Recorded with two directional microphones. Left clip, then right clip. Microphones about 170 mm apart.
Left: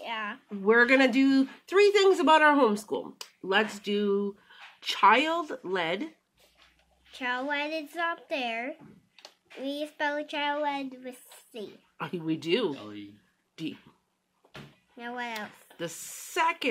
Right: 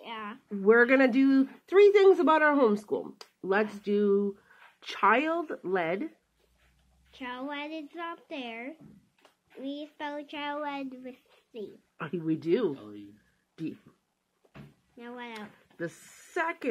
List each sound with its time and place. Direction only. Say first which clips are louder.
0.0 s a sound: left 5 dB; 30° left (ahead or behind)
0.6 s speech: even; 10° left (ahead or behind)
7.1 s a woman's voice: left 7 dB; 35° left (ahead or behind)
12.3 s speech: even; 10° left (ahead or behind)
15.0 s a woman's voice: left 6 dB; 35° left (ahead or behind)